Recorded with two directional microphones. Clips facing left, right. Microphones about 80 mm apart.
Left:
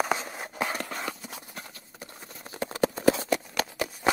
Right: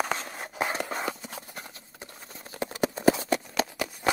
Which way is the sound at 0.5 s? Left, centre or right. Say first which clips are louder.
Right 2 dB; centre.